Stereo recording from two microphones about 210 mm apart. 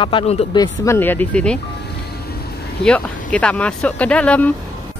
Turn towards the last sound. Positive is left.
turn(degrees=5)  # may be behind; listen again after turning